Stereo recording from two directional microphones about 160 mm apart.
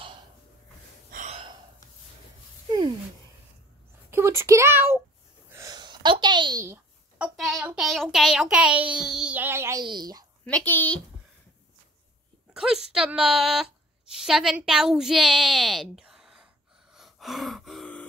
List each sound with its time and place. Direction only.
1.1 s gasp: 50° right (ahead or behind)
4.1 s a child's voice: 15° right (ahead or behind)
5.5 s a sound: 20° right (ahead or behind)
7.2 s child singing: centre (ahead or behind); by 9.8 s 15° right (ahead or behind)
9.8 s a woman's voice: 25° right (ahead or behind)
10.4 s a child's voice: 10° left (ahead or behind)
12.5 s child singing: 5° right (ahead or behind)
16.9 s gasp: centre (ahead or behind)